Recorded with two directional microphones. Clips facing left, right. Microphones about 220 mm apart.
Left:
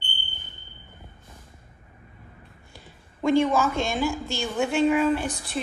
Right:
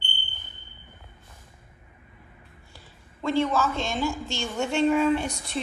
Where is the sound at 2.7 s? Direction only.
15° left (ahead or behind).